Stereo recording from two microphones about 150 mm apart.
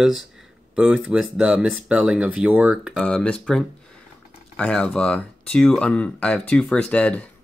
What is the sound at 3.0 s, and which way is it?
Speech, 5° left (ahead or behind).